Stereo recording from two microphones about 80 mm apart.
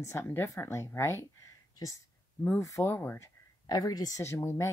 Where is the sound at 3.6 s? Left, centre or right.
Left.